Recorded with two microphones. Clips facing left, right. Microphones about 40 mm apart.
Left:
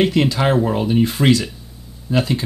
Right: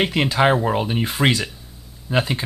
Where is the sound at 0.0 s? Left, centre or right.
Centre.